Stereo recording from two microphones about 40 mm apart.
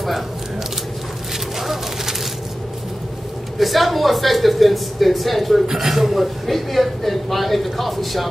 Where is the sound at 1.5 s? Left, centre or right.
Centre.